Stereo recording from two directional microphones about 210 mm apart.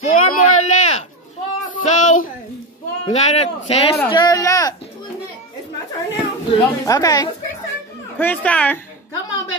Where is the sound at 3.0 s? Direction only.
30° left (ahead or behind).